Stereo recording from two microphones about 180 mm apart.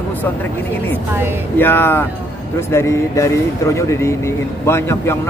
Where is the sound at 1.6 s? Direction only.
10° left (ahead or behind).